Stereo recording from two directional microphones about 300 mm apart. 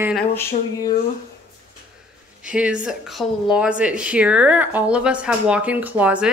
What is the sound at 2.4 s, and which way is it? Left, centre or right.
A woman's voice, centre.